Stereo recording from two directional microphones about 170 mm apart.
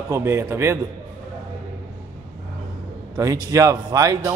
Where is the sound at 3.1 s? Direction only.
20° right (ahead or behind).